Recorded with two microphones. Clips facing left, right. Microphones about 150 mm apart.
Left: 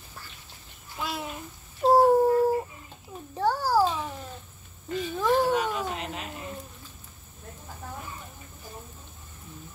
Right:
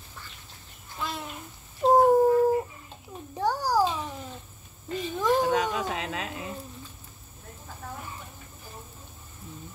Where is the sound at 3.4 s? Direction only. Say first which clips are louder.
Left 1 dB; 15° right (ahead or behind).